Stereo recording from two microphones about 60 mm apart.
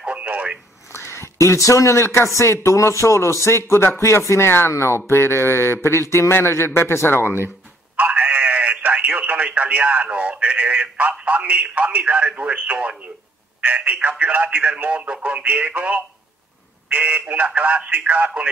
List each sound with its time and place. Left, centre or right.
0.0 s telephone: right
0.9 s a man's voice: left
7.2 s speech: right
7.9 s radio: right
13.6 s speech: right